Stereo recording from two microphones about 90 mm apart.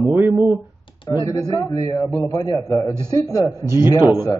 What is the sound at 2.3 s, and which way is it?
A man's voice, 45° left (ahead or behind).